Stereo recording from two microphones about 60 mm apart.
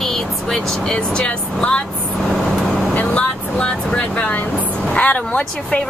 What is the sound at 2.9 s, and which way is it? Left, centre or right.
Vehicle, left.